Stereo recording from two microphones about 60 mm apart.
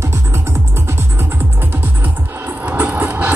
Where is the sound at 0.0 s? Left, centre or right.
Right.